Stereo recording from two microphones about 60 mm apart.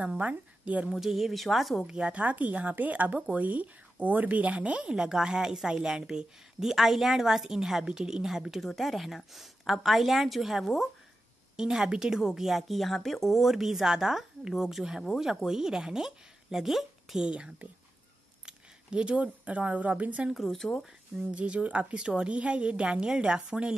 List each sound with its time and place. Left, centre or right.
0.0 s a woman's voice: right
0.9 s a woman's voice: centre
1.9 s a woman's voice: centre
20.4 s speech: centre
21.2 s a woman's voice: centre